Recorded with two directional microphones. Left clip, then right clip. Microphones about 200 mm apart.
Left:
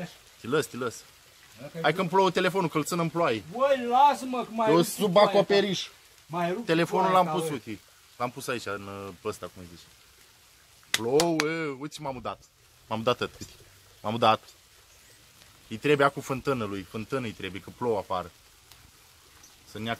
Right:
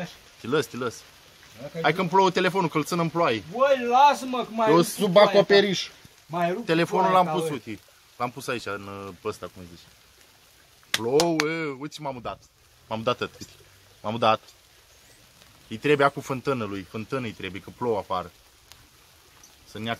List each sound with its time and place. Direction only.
0.4 s speech: centre (ahead or behind)
3.5 s speech: 15° right (ahead or behind)
6.6 s speech: 5° left (ahead or behind)
10.9 s speech: 5° right (ahead or behind)
12.8 s a man's voice: 30° left (ahead or behind)
15.7 s speech: 5° left (ahead or behind)
19.7 s speech: centre (ahead or behind)